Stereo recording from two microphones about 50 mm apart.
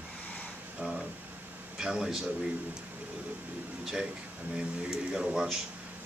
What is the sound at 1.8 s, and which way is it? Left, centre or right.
Speech, centre.